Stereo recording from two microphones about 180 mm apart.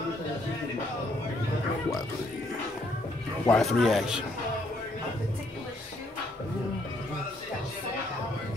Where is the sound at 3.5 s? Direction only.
Centre (ahead or behind).